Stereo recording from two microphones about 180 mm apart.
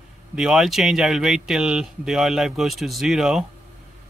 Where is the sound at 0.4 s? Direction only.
Centre (ahead or behind).